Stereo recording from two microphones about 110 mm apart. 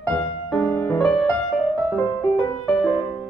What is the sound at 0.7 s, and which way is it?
Music, 10° left (ahead or behind).